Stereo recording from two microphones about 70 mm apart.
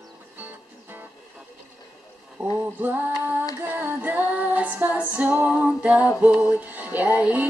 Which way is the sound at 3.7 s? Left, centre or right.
Right.